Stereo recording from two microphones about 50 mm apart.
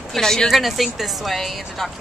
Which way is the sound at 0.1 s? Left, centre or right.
Centre.